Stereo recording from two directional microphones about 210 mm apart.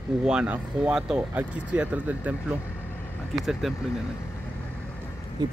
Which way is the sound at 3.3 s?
Centre (ahead or behind).